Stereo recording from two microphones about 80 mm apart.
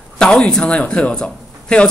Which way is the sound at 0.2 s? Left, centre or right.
Centre.